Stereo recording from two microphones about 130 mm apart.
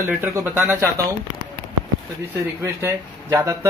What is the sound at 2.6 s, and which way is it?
Speech, 25° right (ahead or behind).